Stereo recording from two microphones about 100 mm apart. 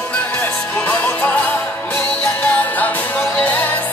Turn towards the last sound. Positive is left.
turn(degrees=15)  # may be behind; listen again after turning